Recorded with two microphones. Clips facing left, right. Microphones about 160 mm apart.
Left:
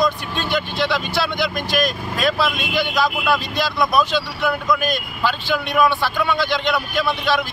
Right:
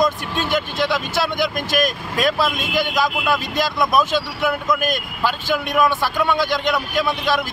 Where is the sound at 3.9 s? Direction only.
45° right (ahead or behind).